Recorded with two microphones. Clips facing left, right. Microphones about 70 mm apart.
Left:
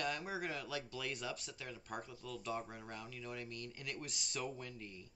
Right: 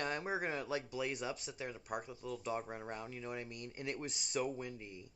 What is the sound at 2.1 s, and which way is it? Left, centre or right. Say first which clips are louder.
Speech: right 1 dB; right.